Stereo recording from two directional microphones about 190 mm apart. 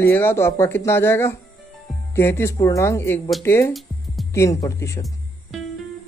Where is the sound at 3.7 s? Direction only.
Centre (ahead or behind).